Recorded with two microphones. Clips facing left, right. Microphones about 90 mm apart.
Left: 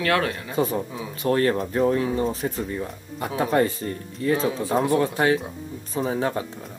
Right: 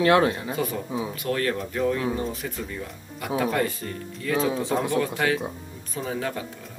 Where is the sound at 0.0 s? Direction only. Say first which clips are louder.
Right 4 dB; 25° right (ahead or behind).